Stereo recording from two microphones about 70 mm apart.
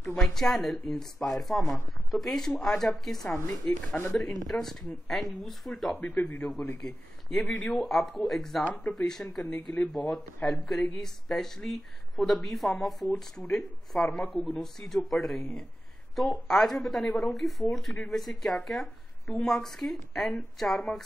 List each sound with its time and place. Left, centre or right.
0.0 s speech: centre
3.4 s speech: left
4.5 s speech: centre